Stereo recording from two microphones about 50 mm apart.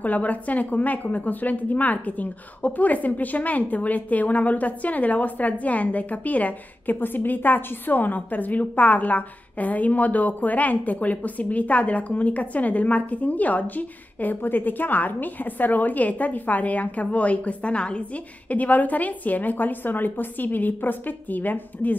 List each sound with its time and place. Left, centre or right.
0.0 s a woman's voice: left